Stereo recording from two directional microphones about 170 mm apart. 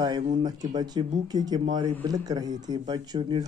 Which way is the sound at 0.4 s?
25° right (ahead or behind).